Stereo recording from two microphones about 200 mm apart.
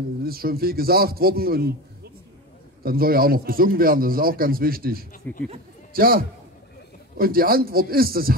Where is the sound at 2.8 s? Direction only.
50° right (ahead or behind).